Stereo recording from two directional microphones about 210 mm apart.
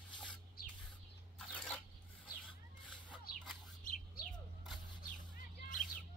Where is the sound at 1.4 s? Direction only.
5° left (ahead or behind).